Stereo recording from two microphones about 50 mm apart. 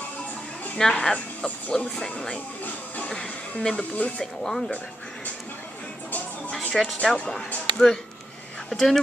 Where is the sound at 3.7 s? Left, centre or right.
Left.